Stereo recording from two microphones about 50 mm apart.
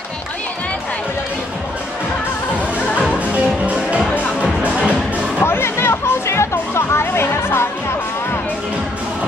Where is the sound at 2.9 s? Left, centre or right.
Left.